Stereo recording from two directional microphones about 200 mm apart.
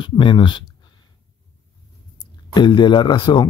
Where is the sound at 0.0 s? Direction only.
25° left (ahead or behind).